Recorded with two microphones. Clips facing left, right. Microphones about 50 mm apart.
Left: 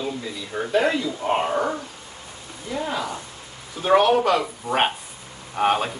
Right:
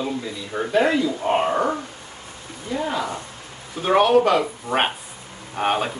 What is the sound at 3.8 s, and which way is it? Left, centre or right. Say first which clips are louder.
Speech: right 1 dB; centre.